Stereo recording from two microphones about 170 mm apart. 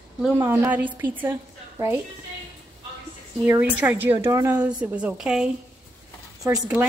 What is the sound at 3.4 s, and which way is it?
A woman's voice, 10° right (ahead or behind).